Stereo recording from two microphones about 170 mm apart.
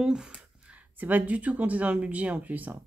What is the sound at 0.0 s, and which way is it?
Speech, 5° right (ahead or behind).